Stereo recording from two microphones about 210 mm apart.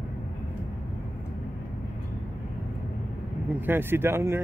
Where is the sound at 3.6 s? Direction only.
10° right (ahead or behind).